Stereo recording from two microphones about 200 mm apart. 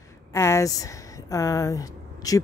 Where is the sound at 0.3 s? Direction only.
15° left (ahead or behind).